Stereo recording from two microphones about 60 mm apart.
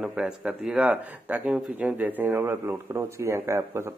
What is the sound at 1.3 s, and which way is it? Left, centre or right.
Speech, right.